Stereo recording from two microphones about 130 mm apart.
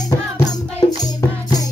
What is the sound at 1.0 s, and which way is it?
Music, 30° left (ahead or behind).